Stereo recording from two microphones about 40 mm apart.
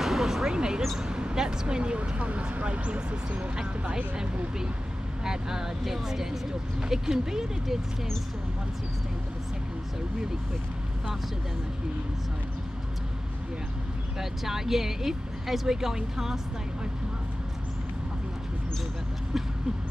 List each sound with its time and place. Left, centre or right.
0.0 s a sound: centre
0.5 s speech: centre
14.4 s speech: centre